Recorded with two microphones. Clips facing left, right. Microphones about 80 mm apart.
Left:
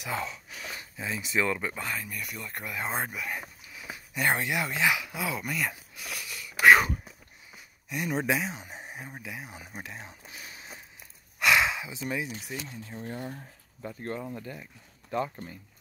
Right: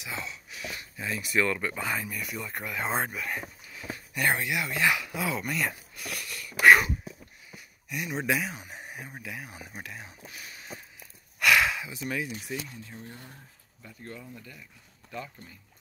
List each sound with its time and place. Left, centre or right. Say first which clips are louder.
0.0 s a sound: left 4 dB; left
0.9 s speech: right 1 dB; left
1.8 s speech: right 3 dB; centre
3.1 s speech: right 1 dB; centre
3.3 s a sound: right 2 dB; centre
4.2 s speech: even; left
4.8 s speech: right 2 dB; centre
5.9 s wheeze: right 1 dB; centre
7.5 s a sound: left 1 dB; left
8.3 s speech: even; left
11.3 s a sound: right 1 dB; left
12.1 s speech: right 1 dB; centre
13.8 s speech: left 8 dB; left